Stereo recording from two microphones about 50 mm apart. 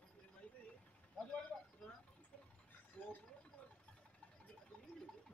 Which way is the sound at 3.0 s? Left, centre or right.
Left.